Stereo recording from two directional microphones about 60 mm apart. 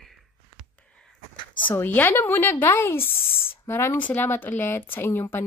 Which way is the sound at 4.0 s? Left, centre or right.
Left.